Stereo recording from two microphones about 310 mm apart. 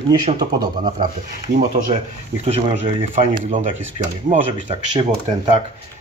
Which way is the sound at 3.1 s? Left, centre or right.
Right.